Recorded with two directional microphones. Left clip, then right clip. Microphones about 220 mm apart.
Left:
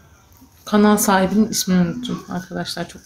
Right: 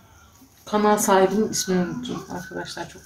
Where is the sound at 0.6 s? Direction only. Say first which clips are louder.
Left 3 dB; 45° left (ahead or behind).